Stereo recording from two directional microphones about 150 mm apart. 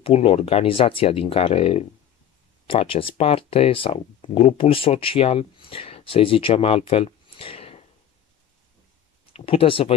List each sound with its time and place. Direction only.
0.0 s speech: 40° left (ahead or behind)
9.3 s speech: 40° left (ahead or behind)